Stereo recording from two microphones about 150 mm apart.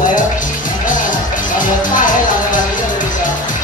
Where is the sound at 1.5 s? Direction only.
60° left (ahead or behind).